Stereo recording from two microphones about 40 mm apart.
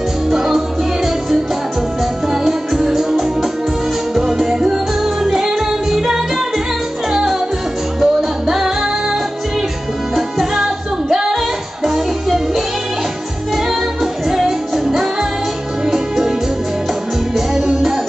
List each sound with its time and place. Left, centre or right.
0.3 s music: centre
2.4 s music: centre
8.0 s music: centre
11.3 s music: centre
14.2 s music: centre
17.6 s music: centre